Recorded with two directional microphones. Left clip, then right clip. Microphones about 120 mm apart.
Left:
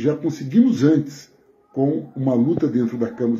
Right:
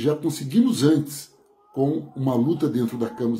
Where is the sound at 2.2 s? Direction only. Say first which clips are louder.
Left 3 dB; 25° right (ahead or behind).